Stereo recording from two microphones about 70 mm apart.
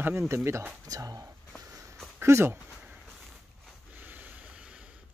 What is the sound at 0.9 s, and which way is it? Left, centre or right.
Speech, right.